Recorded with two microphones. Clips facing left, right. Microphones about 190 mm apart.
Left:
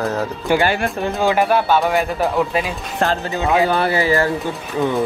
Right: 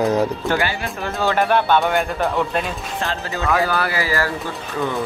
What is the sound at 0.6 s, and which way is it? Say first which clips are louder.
Speech: left 5 dB; 60° left (ahead or behind).